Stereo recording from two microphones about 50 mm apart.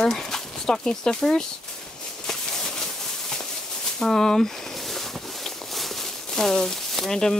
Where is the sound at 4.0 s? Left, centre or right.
Centre.